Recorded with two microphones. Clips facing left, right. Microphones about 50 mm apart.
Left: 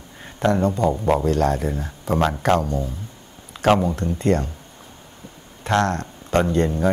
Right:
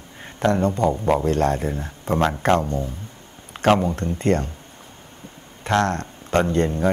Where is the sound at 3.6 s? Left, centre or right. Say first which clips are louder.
Even; right.